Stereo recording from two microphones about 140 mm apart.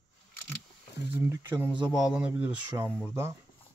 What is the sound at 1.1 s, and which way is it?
Speech, 15° right (ahead or behind).